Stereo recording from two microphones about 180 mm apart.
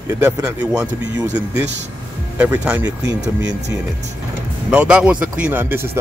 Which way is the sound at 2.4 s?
10° right (ahead or behind).